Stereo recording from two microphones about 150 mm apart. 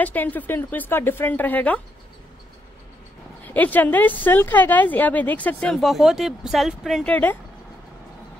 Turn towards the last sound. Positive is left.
turn(degrees=10)  # may be behind; listen again after turning